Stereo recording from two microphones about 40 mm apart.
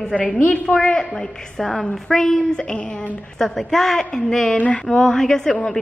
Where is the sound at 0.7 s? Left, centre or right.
Centre.